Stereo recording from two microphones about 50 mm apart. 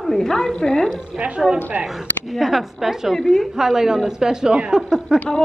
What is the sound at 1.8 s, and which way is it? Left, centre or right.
Speech, centre.